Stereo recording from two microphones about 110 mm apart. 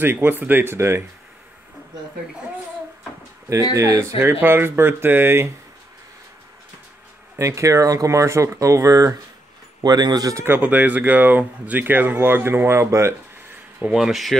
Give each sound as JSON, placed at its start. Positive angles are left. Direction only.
{"t": 0.0, "sound": "speech", "side_deg": -20}
{"t": 3.7, "sound": "speech", "side_deg": -30}
{"t": 7.3, "sound": "speech", "side_deg": -25}
{"t": 10.4, "sound": "speech", "side_deg": -20}
{"t": 13.7, "sound": "speech", "side_deg": -5}